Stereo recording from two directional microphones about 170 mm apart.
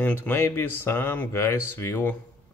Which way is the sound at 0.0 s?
10° left (ahead or behind).